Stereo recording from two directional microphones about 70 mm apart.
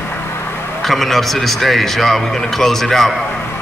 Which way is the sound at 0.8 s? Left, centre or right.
Centre.